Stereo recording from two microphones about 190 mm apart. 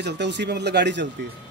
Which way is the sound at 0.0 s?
65° right (ahead or behind).